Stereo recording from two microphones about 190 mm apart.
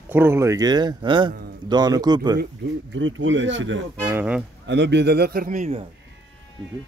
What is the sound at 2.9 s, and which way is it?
Speech, 85° right.